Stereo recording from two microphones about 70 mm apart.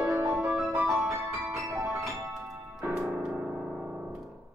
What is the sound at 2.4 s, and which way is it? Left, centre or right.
Music, centre.